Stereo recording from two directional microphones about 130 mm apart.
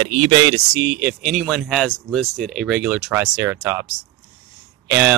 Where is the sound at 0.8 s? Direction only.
15° right (ahead or behind).